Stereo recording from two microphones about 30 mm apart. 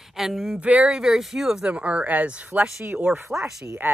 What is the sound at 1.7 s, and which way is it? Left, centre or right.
Speech, right.